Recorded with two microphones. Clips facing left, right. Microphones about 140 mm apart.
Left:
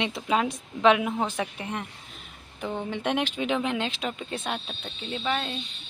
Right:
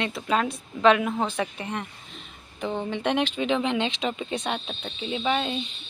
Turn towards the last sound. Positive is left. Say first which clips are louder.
# right 4 dB
turn(degrees=-5)  # may be behind; listen again after turning